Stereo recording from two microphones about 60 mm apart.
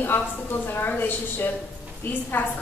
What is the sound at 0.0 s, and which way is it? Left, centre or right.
A woman's voice, left.